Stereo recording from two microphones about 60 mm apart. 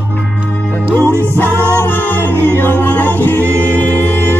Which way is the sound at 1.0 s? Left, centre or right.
Right.